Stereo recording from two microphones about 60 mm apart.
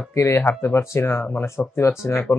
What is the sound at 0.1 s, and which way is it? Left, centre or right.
Speech, left.